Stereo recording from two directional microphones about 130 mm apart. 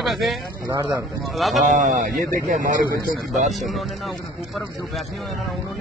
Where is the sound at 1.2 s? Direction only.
Centre (ahead or behind).